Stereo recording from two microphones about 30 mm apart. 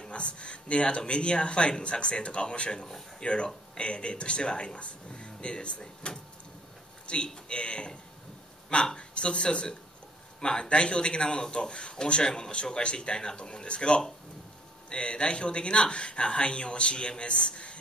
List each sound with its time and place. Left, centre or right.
0.1 s speech: left